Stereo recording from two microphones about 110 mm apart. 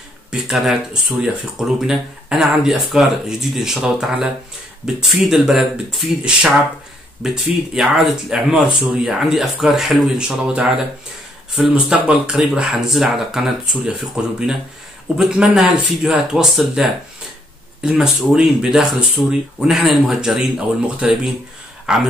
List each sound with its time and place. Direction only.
0.3 s speech: 5° right (ahead or behind)